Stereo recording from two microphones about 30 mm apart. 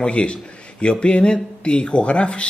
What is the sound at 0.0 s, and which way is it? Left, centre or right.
Speech, left.